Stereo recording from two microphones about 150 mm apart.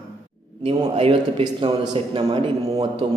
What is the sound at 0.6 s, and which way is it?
A man's voice, 40° right (ahead or behind).